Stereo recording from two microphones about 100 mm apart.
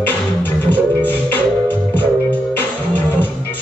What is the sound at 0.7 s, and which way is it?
Music, 15° left (ahead or behind).